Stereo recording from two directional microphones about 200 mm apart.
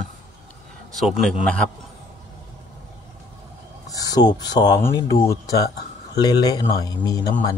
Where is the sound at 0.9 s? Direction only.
Centre (ahead or behind).